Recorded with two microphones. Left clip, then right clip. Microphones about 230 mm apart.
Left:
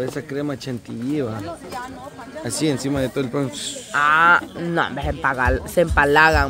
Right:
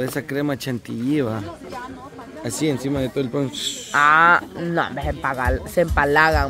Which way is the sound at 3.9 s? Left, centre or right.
Right.